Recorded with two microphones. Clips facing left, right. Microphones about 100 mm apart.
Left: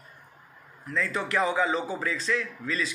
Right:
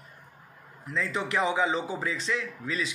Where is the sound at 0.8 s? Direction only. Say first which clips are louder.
Left 1 dB; 20° right (ahead or behind).